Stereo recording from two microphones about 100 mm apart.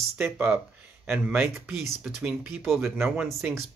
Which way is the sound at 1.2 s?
10° right (ahead or behind).